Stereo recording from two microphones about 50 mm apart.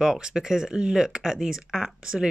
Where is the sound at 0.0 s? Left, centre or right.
Centre.